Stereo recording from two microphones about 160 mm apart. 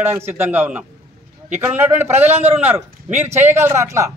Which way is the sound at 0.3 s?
10° right (ahead or behind).